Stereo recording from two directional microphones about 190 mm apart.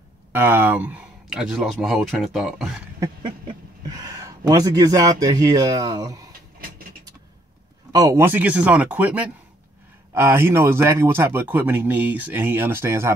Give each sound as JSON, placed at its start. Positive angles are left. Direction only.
{"t": 0.3, "sound": "speech", "side_deg": -10}
{"t": 3.0, "sound": "a sound", "side_deg": -25}
{"t": 3.8, "sound": "speech", "side_deg": -20}
{"t": 7.9, "sound": "speech", "side_deg": -15}